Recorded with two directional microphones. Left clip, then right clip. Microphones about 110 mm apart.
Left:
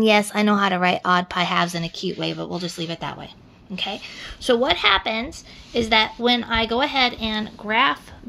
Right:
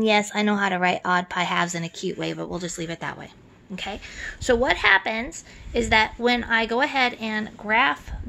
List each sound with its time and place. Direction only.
0.0 s speech: 20° left (ahead or behind)